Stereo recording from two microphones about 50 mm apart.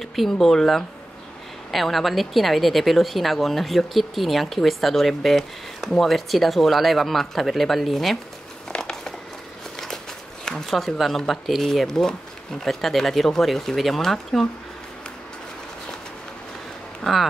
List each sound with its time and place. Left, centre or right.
0.0 s speech: centre
8.7 s a sound: centre
10.4 s speech: centre
17.0 s speech: centre